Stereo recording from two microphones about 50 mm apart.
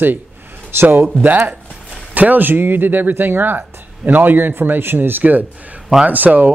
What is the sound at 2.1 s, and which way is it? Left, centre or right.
A man's voice, right.